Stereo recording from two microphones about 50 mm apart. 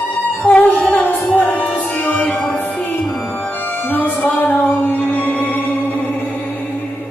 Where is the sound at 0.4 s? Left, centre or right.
Left.